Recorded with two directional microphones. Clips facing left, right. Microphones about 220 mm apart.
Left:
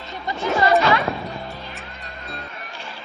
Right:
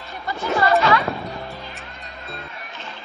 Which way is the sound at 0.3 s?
20° left (ahead or behind).